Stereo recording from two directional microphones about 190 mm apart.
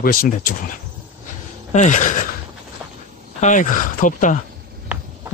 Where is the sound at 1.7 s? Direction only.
40° left (ahead or behind).